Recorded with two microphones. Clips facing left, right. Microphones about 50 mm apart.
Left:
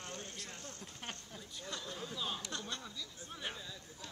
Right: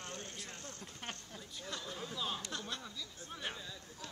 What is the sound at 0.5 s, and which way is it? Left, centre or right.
Speech, right.